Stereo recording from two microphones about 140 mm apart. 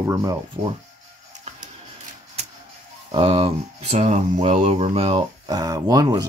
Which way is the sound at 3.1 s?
40° right (ahead or behind).